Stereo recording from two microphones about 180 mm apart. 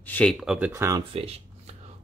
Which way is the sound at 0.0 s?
5° left (ahead or behind).